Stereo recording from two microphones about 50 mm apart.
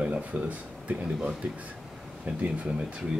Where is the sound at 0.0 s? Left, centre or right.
Right.